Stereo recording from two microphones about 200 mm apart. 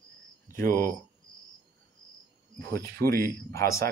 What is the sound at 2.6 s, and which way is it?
Speech, 15° left (ahead or behind).